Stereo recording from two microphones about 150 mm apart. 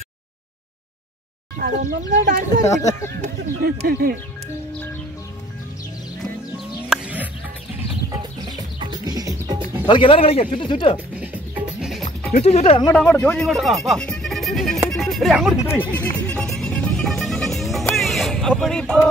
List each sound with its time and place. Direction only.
1.6 s speech: 65° right (ahead or behind)
2.6 s speech: 20° left (ahead or behind)
3.6 s speech: 90° right
6.9 s chicken: 10° right (ahead or behind)
8.1 s music: 25° right (ahead or behind)
9.8 s speech: 35° left (ahead or behind)
11.1 s music: 5° right (ahead or behind)
12.4 s speech: 45° left (ahead or behind)
12.9 s speech: 10° left (ahead or behind)
14.9 s music: centre (ahead or behind)
15.6 s music: 15° left (ahead or behind)